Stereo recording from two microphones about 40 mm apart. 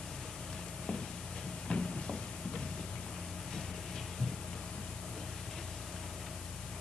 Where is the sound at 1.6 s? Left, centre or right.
Centre.